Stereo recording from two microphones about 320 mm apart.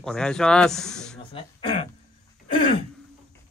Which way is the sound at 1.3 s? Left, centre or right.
Centre.